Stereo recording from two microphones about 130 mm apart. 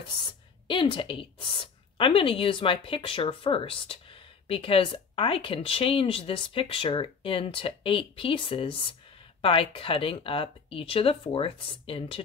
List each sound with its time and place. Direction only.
0.2 s a woman's voice: 40° left (ahead or behind)